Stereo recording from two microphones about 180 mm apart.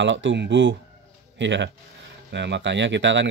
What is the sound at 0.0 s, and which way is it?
Speech, 90° right.